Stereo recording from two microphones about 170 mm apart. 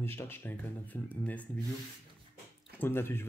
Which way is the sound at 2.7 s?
15° left (ahead or behind).